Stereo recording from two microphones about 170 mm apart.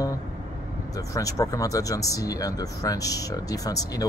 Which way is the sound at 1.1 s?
20° left (ahead or behind).